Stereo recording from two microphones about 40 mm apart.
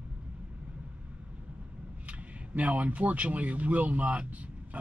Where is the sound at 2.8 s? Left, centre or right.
Right.